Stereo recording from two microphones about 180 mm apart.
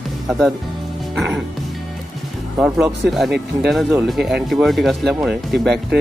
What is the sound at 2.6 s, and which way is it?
Speech, 5° right (ahead or behind).